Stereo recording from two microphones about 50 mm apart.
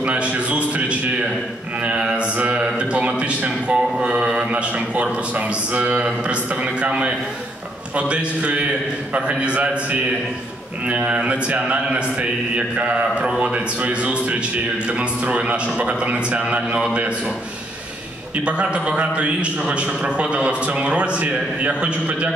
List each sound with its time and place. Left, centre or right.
0.0 s a sound: right
1.9 s a man's voice: right
10.9 s a man's voice: right
18.4 s a man's voice: right